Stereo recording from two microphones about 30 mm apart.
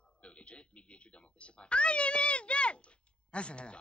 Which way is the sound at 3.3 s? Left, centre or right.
Left.